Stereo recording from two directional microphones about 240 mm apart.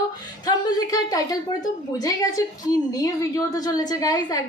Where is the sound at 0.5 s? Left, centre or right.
Centre.